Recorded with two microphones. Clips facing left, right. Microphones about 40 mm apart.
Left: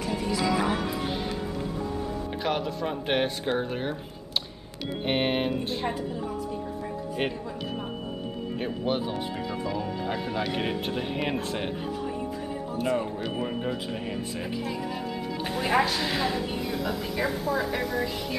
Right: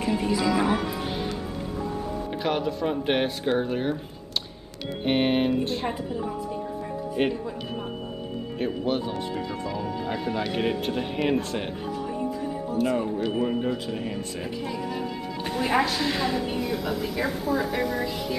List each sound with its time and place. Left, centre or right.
0.4 s speech: centre
2.4 s speech: centre
5.0 s speech: centre
7.2 s speech: centre
12.7 s speech: centre